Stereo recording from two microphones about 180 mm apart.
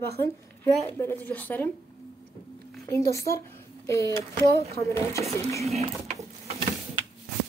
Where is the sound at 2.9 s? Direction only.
15° left (ahead or behind).